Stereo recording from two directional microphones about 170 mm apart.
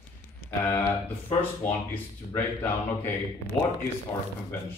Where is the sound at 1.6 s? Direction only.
10° left (ahead or behind).